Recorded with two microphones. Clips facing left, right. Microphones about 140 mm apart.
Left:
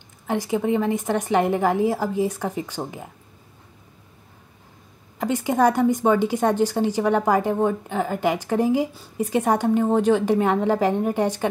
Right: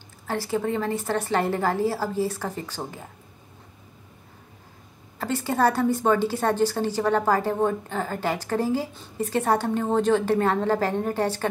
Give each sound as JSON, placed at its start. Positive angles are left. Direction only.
{"t": 0.3, "sound": "a woman's voice", "side_deg": 15}
{"t": 5.2, "sound": "a woman's voice", "side_deg": 15}